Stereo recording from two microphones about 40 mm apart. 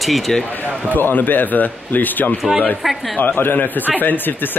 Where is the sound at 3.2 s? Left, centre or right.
Left.